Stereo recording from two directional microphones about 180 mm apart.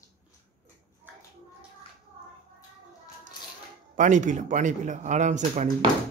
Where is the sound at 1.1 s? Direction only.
10° right (ahead or behind).